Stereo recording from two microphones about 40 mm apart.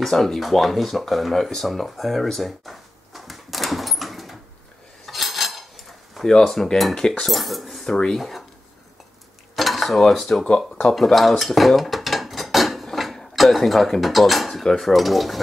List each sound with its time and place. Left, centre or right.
0.0 s speech: centre
5.0 s dishes: centre
6.4 s cutlery: centre
7.0 s cutlery: centre
7.2 s speech: centre
9.6 s dishes: centre
14.6 s cutlery: centre